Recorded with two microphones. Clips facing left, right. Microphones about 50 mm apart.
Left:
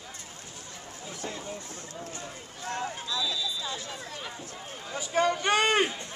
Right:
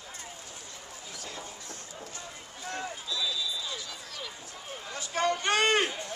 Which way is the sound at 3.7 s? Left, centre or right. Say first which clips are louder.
Left 3 dB; left.